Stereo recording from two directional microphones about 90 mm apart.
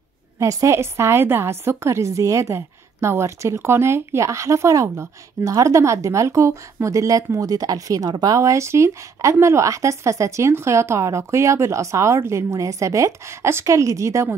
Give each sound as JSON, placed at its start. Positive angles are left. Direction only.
{"t": 0.4, "sound": "a woman's voice", "side_deg": -35}